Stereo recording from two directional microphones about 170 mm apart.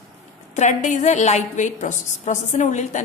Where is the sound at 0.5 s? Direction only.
45° left (ahead or behind).